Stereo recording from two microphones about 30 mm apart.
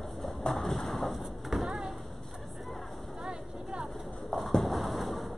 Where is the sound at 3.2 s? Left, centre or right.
Right.